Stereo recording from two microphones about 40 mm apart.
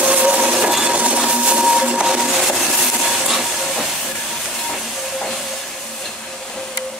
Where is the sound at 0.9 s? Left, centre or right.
Right.